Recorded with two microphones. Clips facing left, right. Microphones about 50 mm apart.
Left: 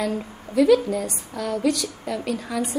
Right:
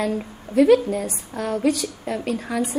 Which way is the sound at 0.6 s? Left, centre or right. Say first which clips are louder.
Right 2 dB; right.